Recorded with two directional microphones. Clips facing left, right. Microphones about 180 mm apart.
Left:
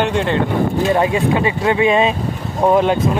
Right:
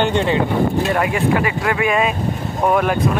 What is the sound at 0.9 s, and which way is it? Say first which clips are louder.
Speech: left 2 dB; 25° left (ahead or behind).